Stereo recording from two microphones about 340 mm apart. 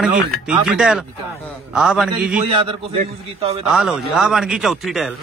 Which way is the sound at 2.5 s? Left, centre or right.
Centre.